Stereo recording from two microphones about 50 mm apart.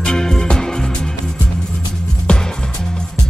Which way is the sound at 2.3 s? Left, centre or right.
Centre.